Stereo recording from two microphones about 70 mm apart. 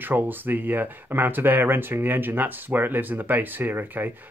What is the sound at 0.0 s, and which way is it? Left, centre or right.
Speech, right.